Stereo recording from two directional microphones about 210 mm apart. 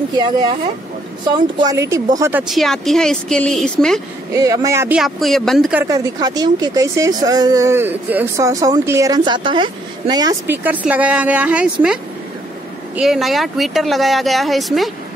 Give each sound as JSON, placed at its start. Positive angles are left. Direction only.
{"t": 1.6, "sound": "speech", "side_deg": -15}
{"t": 2.4, "sound": "speech", "side_deg": 0}
{"t": 4.3, "sound": "speech", "side_deg": -15}
{"t": 5.9, "sound": "speech", "side_deg": -20}